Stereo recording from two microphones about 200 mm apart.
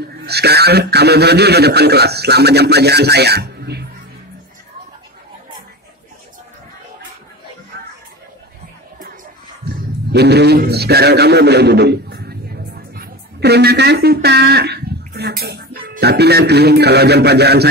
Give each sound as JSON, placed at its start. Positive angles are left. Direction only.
{"t": 0.2, "sound": "speech", "side_deg": -55}
{"t": 10.1, "sound": "a man's voice", "side_deg": -55}